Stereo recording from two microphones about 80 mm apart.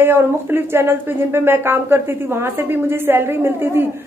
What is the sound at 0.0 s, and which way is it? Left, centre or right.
A woman's voice, right.